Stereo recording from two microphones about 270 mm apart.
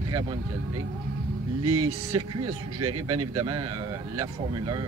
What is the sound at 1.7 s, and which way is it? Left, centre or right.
Speech, right.